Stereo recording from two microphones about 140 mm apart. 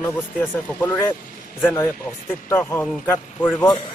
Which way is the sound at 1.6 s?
15° left (ahead or behind).